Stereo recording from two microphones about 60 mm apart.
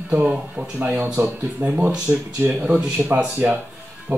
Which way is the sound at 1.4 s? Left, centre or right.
Right.